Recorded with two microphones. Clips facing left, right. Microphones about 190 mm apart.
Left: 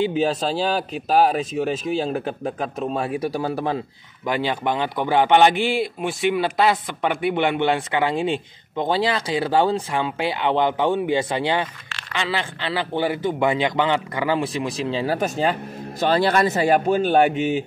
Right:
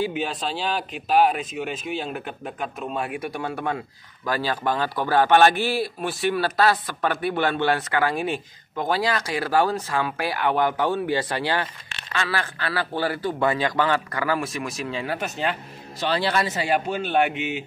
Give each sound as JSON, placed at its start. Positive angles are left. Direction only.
{"t": 0.1, "sound": "a man's voice", "side_deg": 40}
{"t": 15.1, "sound": "a man's voice", "side_deg": 45}